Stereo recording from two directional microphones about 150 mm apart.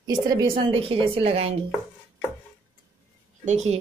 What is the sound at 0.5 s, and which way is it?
Speech, 40° right (ahead or behind).